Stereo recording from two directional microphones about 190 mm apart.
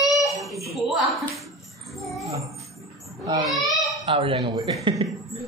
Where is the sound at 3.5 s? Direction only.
Centre (ahead or behind).